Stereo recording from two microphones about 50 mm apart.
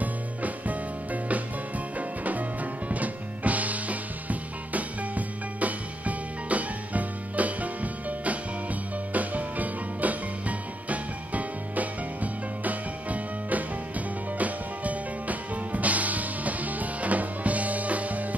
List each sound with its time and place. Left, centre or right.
0.0 s music: right